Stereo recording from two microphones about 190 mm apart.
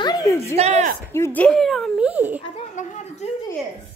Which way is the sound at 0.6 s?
35° right (ahead or behind).